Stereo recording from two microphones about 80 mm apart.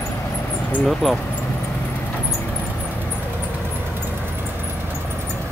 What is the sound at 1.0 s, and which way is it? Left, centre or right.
Speech, centre.